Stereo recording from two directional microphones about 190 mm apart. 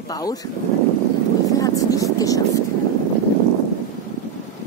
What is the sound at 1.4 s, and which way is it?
Speech, 20° left (ahead or behind).